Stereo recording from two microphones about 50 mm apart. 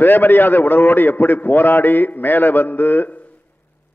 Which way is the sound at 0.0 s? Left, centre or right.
Left.